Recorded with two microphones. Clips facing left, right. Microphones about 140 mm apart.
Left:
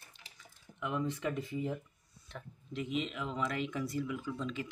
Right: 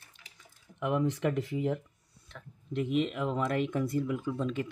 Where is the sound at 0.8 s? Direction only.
65° right (ahead or behind).